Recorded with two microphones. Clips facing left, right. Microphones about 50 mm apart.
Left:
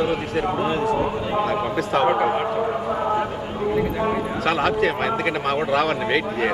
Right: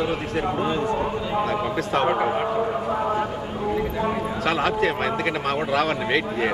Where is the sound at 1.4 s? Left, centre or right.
Centre.